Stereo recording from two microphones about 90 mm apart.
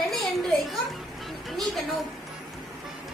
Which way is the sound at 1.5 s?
Centre (ahead or behind).